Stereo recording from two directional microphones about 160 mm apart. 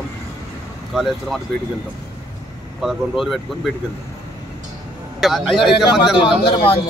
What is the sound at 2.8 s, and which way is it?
Speech, centre (ahead or behind).